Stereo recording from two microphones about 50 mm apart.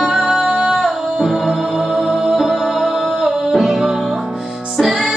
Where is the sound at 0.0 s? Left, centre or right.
Centre.